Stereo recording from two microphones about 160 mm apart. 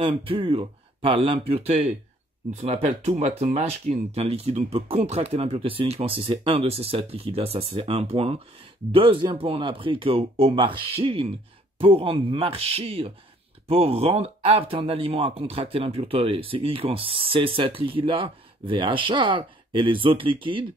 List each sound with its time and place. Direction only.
0.0 s speech: 35° right (ahead or behind)